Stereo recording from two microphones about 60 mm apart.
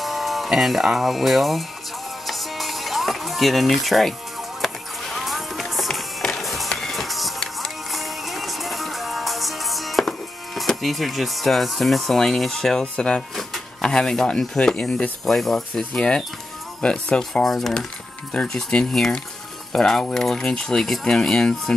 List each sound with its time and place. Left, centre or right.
0.0 s speech: centre
2.2 s music: centre
5.1 s music: centre
10.8 s speech: centre
15.5 s speech: centre
17.2 s speech: centre
18.3 s speech: centre